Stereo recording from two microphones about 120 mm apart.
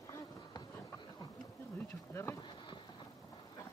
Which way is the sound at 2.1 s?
20° left (ahead or behind).